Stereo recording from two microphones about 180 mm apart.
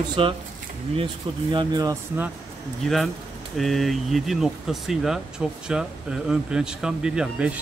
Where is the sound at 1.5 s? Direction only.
25° right (ahead or behind).